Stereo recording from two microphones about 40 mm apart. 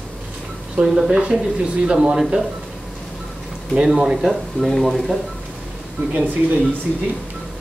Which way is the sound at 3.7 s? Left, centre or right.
Centre.